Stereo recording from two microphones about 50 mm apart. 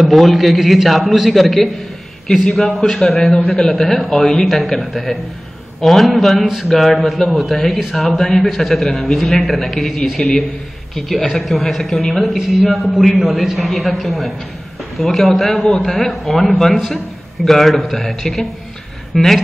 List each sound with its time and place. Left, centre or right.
0.0 s a man's voice: centre